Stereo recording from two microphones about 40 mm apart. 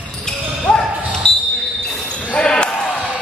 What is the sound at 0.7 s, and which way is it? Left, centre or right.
Basketball bounce, centre.